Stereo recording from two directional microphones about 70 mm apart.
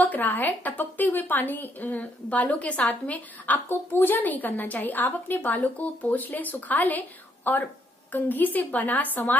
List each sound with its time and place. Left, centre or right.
0.0 s a woman's voice: left